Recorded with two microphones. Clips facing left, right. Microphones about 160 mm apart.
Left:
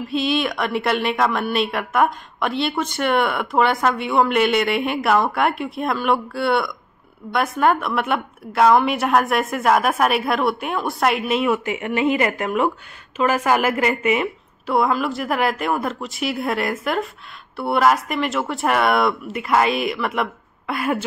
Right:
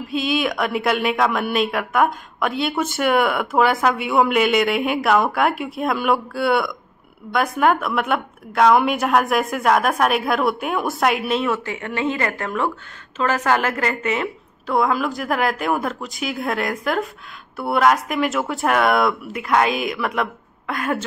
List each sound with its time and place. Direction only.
0.0 s a woman's voice: centre (ahead or behind)